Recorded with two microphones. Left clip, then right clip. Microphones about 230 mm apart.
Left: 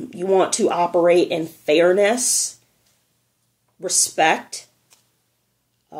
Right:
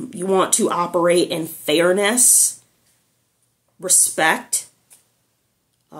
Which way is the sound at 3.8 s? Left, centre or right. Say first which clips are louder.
Even; centre.